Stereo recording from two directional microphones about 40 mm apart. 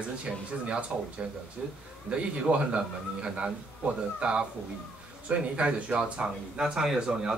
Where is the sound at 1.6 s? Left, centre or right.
Right.